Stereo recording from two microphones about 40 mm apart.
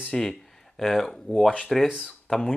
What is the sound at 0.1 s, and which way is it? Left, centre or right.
Speech, centre.